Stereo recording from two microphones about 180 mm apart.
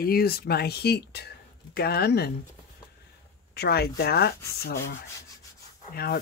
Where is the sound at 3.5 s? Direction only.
60° left (ahead or behind).